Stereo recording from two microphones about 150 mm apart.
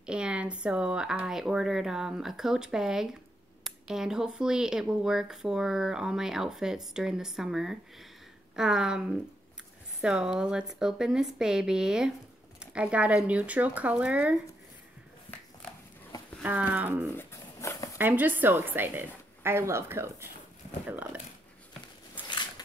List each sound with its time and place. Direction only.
0.0 s speech: 5° right (ahead or behind)
10.0 s a woman's voice: 5° right (ahead or behind)
15.3 s a sound: 35° left (ahead or behind)
16.4 s a woman's voice: 10° right (ahead or behind)
17.2 s dog: 20° left (ahead or behind)
17.9 s a woman's voice: 10° right (ahead or behind)